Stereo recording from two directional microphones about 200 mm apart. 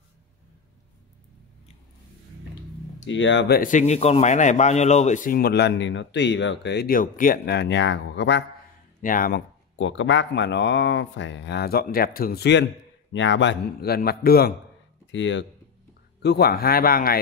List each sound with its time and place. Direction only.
3.1 s speech: 65° left (ahead or behind)
9.0 s a man's voice: 45° left (ahead or behind)
9.8 s a man's voice: 70° left (ahead or behind); by 14.5 s 50° left (ahead or behind)
15.0 s speech: 65° left (ahead or behind)
16.2 s a man's voice: 55° left (ahead or behind)